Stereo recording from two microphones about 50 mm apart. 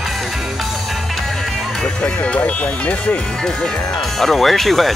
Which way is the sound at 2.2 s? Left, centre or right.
Left.